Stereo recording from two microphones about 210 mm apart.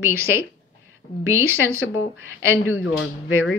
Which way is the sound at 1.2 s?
10° right (ahead or behind).